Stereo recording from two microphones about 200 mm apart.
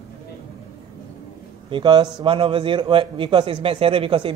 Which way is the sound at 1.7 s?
25° right (ahead or behind).